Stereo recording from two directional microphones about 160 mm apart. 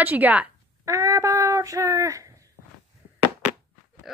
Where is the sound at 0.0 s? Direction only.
10° right (ahead or behind).